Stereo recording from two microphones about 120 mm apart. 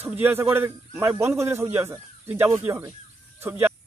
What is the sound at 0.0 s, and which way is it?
A man's voice, 15° right (ahead or behind).